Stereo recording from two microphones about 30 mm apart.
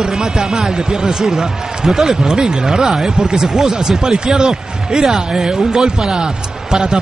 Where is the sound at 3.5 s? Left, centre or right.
Centre.